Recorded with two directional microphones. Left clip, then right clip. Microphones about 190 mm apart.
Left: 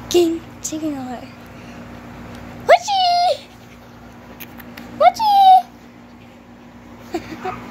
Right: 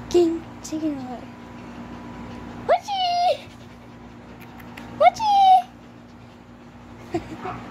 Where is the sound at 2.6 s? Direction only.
10° left (ahead or behind).